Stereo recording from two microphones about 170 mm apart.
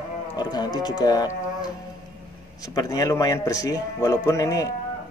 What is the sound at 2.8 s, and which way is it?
Speech, 20° left (ahead or behind).